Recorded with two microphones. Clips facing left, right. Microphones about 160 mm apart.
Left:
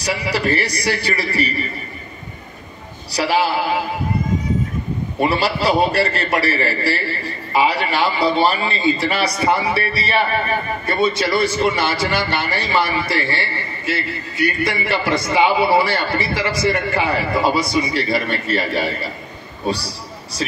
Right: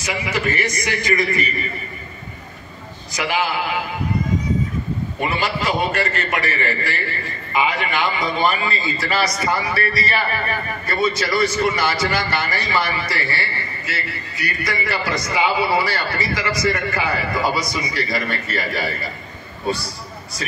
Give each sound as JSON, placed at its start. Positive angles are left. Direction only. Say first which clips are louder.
{"t": 0.0, "sound": "a man's voice", "louder": "left 2 dB", "side_deg": 35}
{"t": 3.1, "sound": "a man's voice", "louder": "left 4 dB", "side_deg": 35}
{"t": 5.2, "sound": "a man's voice", "louder": "left 5 dB", "side_deg": 35}